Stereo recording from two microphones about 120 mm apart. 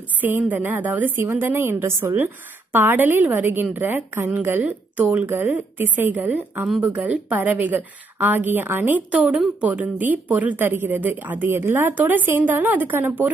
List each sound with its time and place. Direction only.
0.2 s a woman's voice: 15° right (ahead or behind)